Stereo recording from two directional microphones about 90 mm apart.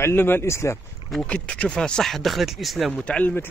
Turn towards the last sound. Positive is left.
turn(degrees=15)  # may be behind; listen again after turning